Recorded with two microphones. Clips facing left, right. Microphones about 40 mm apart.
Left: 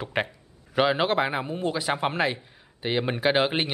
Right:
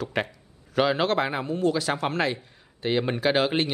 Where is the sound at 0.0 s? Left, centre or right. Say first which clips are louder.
Even; centre.